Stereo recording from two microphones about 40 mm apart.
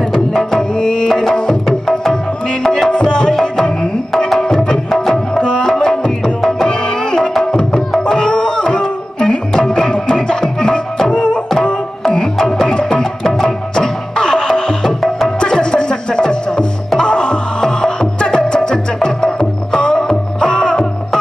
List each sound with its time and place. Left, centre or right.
0.1 s tabla: centre
4.6 s music: centre